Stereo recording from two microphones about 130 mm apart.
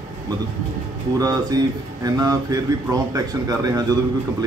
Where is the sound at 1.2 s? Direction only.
30° right (ahead or behind).